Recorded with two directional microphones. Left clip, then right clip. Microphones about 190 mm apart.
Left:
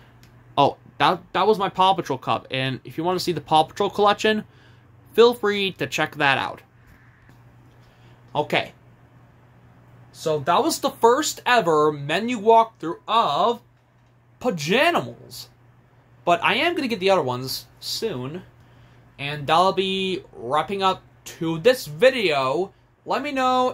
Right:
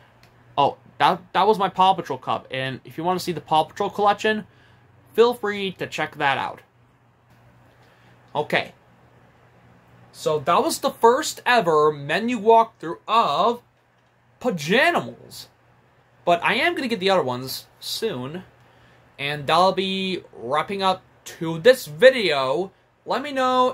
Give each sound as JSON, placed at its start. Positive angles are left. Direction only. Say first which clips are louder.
{"t": 0.6, "sound": "speech", "louder": "even", "side_deg": 15}
{"t": 8.3, "sound": "speech", "louder": "even", "side_deg": 0}
{"t": 10.1, "sound": "speech", "louder": "right 1 dB", "side_deg": -5}